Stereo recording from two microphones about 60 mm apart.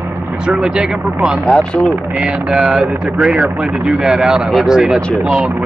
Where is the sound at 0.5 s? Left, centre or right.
Centre.